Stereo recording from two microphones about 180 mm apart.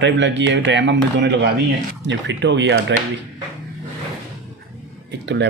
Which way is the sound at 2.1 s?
80° right.